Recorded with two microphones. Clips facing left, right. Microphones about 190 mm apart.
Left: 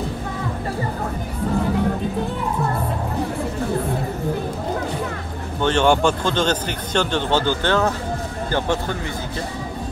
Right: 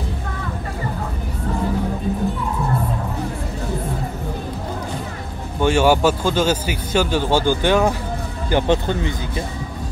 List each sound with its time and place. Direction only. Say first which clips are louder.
5.6 s speech: right 2 dB; 10° right (ahead or behind)